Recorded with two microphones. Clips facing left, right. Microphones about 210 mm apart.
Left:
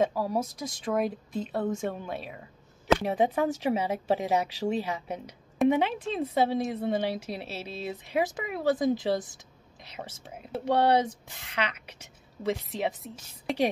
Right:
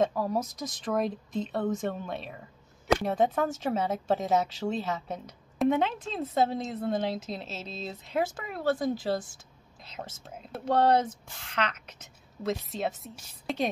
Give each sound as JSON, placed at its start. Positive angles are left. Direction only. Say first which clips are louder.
{"t": 0.0, "sound": "speech", "louder": "even", "side_deg": 5}
{"t": 0.4, "sound": "speech", "louder": "left 1 dB", "side_deg": 30}
{"t": 0.8, "sound": "speech", "louder": "left 1 dB", "side_deg": 5}